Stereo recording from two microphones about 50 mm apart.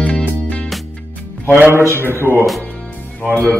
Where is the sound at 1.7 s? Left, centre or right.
Right.